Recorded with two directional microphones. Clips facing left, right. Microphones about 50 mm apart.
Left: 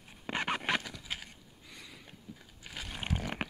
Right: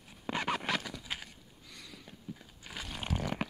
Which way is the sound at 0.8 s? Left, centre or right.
Centre.